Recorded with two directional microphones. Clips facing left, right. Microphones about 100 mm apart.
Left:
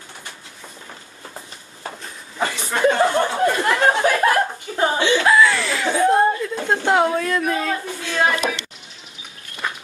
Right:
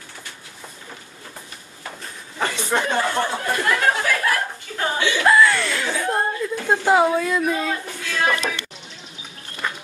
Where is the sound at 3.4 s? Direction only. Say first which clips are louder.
Left 4 dB; 25° left (ahead or behind).